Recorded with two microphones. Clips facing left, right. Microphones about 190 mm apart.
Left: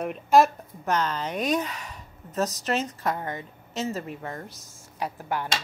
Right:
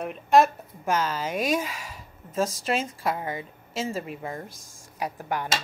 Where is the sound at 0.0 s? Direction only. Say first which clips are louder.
Even; centre (ahead or behind); by 5.5 s 15° right (ahead or behind).